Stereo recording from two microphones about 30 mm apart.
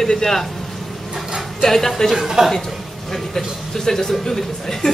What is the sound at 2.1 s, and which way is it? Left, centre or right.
Speech, centre.